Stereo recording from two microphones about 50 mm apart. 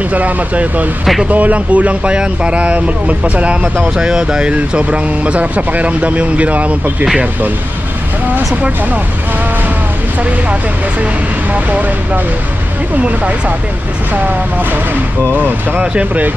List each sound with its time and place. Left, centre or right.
0.1 s speech: right
4.0 s speech: centre
11.5 s speech: right
15.3 s speech: right
15.8 s speech: right